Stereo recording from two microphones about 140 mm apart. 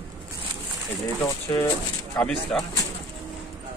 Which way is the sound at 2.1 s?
5° left (ahead or behind).